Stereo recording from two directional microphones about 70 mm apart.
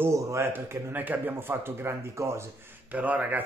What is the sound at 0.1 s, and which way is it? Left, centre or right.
Speech, right.